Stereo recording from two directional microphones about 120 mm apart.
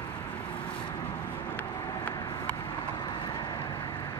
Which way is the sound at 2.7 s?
40° left (ahead or behind).